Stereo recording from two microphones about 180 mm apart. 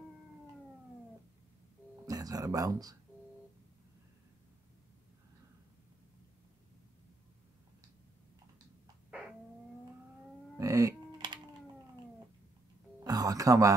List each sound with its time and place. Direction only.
2.0 s speech: 20° right (ahead or behind)
10.6 s music: 20° right (ahead or behind)
13.0 s music: 20° right (ahead or behind)